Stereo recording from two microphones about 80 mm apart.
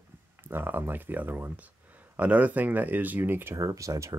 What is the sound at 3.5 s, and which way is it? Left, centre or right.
Speech, right.